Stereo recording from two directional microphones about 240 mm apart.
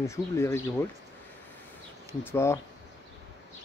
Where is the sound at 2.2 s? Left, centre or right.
Centre.